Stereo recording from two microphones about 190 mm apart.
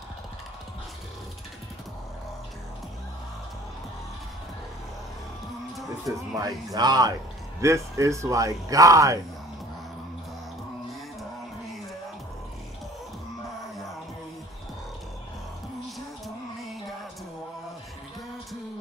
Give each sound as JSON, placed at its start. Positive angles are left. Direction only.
{"t": 6.1, "sound": "speech", "side_deg": -20}